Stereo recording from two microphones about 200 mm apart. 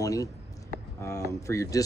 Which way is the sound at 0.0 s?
15° left (ahead or behind).